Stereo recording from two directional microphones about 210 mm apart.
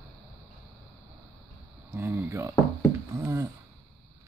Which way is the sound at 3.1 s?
15° right (ahead or behind).